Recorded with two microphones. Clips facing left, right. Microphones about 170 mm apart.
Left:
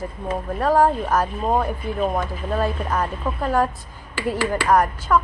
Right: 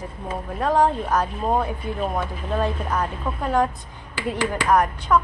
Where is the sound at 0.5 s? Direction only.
5° left (ahead or behind).